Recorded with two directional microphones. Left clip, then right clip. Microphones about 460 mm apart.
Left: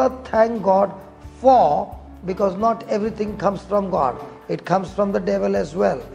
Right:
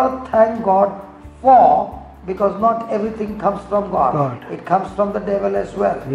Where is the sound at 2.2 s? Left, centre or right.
Left.